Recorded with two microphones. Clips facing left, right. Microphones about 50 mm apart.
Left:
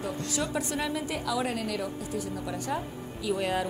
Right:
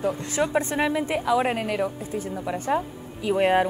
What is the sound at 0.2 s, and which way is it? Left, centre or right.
A woman's voice, right.